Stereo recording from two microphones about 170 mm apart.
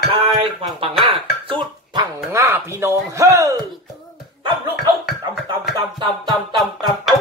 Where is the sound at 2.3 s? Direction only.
15° right (ahead or behind).